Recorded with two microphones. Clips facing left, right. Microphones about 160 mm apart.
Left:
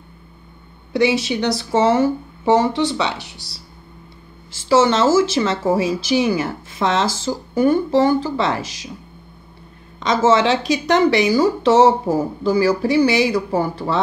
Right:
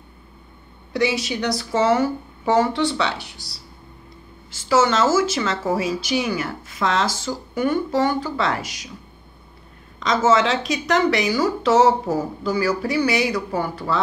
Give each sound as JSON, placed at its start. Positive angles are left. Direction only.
{"t": 0.9, "sound": "speech", "side_deg": 30}
{"t": 4.6, "sound": "speech", "side_deg": 30}
{"t": 7.2, "sound": "speech", "side_deg": 35}
{"t": 10.2, "sound": "speech", "side_deg": 30}
{"t": 13.5, "sound": "speech", "side_deg": 40}